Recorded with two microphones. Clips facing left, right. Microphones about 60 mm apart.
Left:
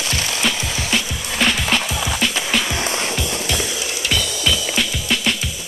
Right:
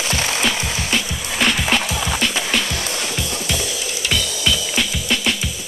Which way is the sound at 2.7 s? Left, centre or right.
Left.